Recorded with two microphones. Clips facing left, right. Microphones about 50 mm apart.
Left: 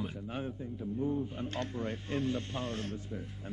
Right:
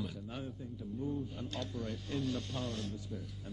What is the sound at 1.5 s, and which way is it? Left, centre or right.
A man's voice, left.